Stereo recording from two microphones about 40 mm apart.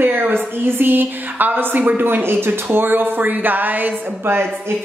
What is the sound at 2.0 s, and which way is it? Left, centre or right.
Speech, right.